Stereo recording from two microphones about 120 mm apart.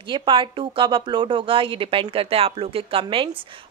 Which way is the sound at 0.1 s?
45° right (ahead or behind).